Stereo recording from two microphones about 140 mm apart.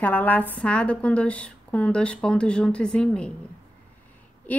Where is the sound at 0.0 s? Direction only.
10° left (ahead or behind).